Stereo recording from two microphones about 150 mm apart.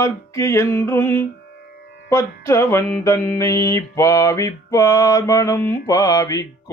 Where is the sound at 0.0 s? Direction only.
20° left (ahead or behind).